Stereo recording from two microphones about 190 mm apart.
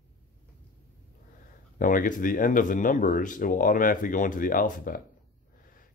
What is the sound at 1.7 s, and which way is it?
Speech, 45° left (ahead or behind).